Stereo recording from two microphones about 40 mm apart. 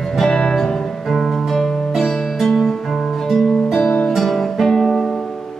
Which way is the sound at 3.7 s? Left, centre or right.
Centre.